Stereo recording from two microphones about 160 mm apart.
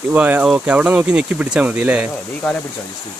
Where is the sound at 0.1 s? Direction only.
10° right (ahead or behind).